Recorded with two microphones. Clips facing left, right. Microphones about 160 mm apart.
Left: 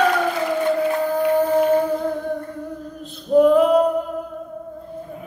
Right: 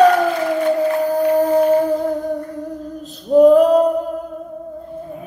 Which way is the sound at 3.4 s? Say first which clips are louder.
Right 4 dB; 40° right (ahead or behind).